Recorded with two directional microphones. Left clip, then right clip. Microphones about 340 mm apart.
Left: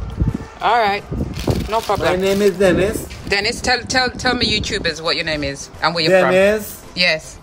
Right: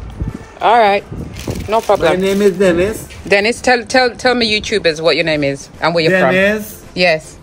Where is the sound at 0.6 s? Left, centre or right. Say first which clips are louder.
Right 6 dB; centre.